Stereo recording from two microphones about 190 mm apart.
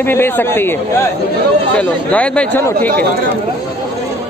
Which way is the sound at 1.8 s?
5° left (ahead or behind).